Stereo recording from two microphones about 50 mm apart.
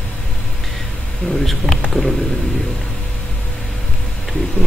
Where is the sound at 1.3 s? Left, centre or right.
Centre.